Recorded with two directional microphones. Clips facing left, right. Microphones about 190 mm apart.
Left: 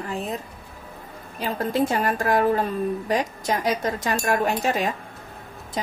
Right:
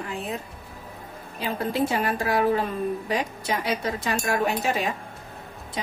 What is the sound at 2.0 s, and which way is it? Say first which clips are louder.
A woman's voice: left 2 dB; 45° left (ahead or behind).